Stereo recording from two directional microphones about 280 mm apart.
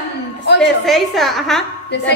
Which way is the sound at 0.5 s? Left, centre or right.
Left.